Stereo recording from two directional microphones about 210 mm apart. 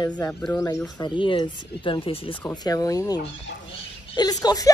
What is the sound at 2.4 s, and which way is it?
A woman's voice, 15° left (ahead or behind).